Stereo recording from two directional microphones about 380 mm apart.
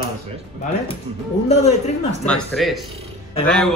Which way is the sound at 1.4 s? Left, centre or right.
Centre.